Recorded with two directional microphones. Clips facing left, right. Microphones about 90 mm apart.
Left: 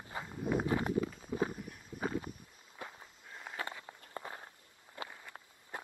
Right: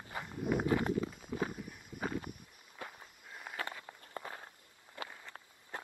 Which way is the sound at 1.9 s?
25° left (ahead or behind).